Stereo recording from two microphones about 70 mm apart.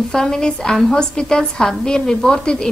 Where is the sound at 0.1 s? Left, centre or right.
Centre.